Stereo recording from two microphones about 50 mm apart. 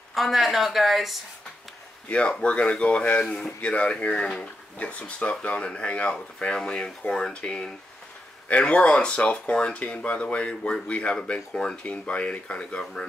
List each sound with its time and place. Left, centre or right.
0.1 s speech: centre
2.0 s speech: left